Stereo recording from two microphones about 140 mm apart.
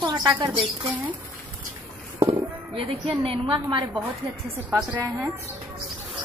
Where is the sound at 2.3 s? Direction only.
40° right (ahead or behind).